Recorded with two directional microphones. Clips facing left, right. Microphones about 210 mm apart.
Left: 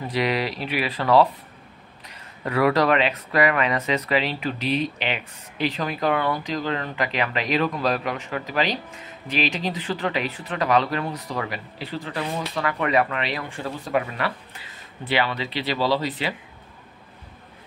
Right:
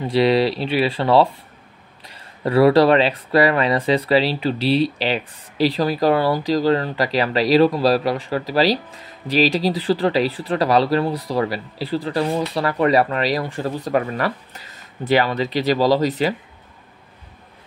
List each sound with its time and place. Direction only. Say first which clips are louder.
0.0 s speech: right 8 dB; 30° right (ahead or behind)